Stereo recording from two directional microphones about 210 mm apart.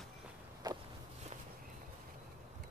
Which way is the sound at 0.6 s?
20° right (ahead or behind).